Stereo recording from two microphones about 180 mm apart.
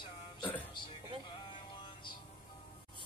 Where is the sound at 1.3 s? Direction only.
25° left (ahead or behind).